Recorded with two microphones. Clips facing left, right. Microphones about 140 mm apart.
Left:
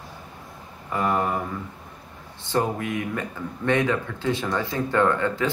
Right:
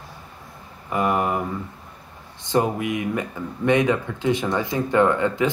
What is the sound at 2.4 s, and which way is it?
Speech, 15° right (ahead or behind).